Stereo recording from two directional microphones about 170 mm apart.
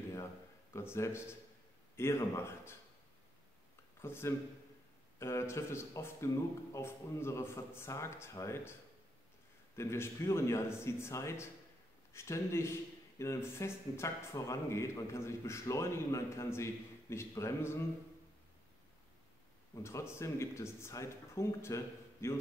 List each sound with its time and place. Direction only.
0.7 s a man's voice: 15° left (ahead or behind)
4.0 s a man's voice: 15° left (ahead or behind)
9.8 s a man's voice: 15° left (ahead or behind)
19.7 s a man's voice: 15° left (ahead or behind)